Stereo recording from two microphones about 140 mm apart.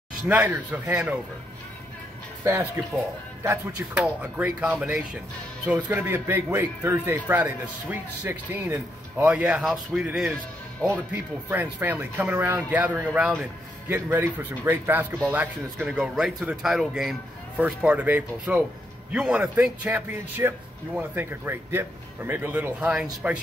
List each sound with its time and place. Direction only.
0.3 s speech: 10° right (ahead or behind)
2.4 s speech: 15° right (ahead or behind)
3.9 s speech: 5° right (ahead or behind)
5.8 s speech: 20° right (ahead or behind)
11.4 s speech: 10° right (ahead or behind)